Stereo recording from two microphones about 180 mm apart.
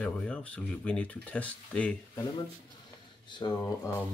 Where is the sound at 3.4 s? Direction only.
20° left (ahead or behind).